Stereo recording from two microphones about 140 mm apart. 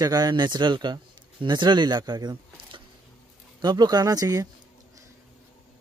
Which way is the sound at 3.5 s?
30° right (ahead or behind).